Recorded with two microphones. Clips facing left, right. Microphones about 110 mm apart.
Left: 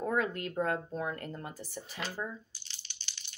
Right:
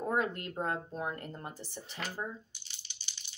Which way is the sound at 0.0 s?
25° right (ahead or behind).